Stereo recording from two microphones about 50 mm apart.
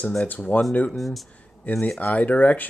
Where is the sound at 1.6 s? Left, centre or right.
Left.